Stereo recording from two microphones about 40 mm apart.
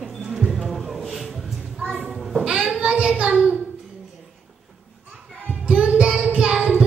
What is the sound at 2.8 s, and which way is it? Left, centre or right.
Child singing, right.